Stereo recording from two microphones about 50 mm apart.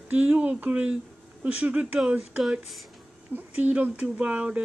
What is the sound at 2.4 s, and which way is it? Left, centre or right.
Speech, centre.